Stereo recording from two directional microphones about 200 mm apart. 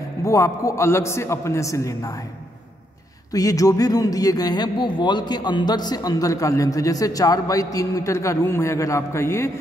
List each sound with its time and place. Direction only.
0.2 s speech: 15° left (ahead or behind)
3.3 s speech: 15° left (ahead or behind)